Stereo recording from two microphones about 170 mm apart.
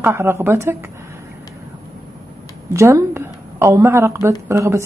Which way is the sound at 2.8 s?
15° right (ahead or behind).